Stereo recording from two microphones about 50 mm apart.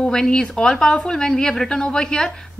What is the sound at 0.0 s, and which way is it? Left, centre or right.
A woman's voice, centre.